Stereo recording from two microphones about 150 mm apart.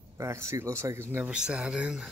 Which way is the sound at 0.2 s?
20° right (ahead or behind).